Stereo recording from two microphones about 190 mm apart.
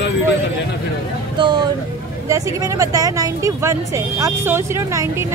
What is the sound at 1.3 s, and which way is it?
Music, 25° right (ahead or behind).